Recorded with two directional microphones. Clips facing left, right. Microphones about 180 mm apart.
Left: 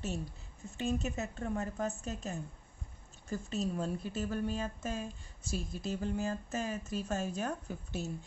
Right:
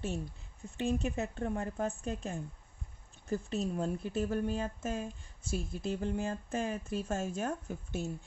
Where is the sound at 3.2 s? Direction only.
60° right (ahead or behind).